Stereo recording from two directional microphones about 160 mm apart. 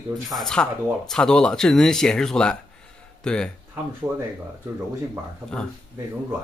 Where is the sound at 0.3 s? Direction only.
5° left (ahead or behind).